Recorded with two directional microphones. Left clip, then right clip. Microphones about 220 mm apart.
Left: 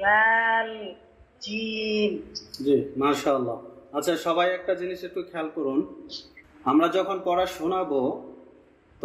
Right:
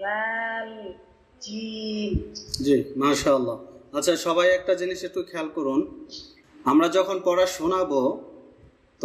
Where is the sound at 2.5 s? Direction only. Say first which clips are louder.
Right 1 dB; 10° right (ahead or behind).